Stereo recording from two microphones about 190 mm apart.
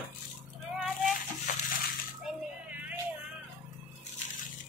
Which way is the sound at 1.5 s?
40° left (ahead or behind).